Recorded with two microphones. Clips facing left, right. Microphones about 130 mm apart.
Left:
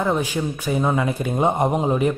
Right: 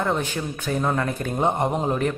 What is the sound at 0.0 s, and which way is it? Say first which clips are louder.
A man's voice: left 3 dB; 10° left (ahead or behind).